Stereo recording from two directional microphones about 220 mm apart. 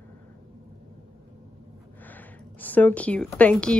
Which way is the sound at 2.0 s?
10° left (ahead or behind).